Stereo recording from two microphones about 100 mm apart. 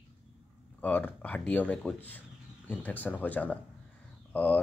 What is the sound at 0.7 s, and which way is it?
Speech, 15° left (ahead or behind).